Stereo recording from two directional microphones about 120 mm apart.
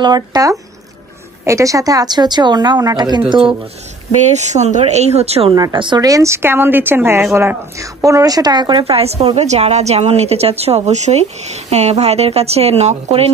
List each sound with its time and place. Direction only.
0.0 s a woman's voice: 35° right (ahead or behind)
3.3 s speech: 45° right (ahead or behind)
4.2 s speech: 70° right (ahead or behind)
5.5 s speech: 35° right (ahead or behind)
8.8 s a woman's voice: 55° right (ahead or behind)